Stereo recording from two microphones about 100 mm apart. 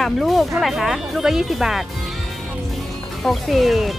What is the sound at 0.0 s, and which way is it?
Speech, centre (ahead or behind).